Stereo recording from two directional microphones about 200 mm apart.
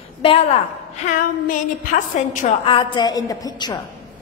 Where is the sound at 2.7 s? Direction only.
20° left (ahead or behind).